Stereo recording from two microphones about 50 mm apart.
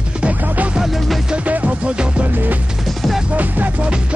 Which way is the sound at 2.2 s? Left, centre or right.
Right.